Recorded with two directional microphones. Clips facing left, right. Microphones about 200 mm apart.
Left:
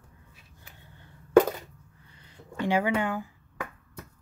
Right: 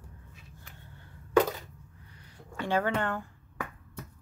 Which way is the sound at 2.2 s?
20° left (ahead or behind).